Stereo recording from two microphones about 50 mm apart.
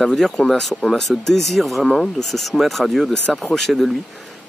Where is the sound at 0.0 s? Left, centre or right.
Centre.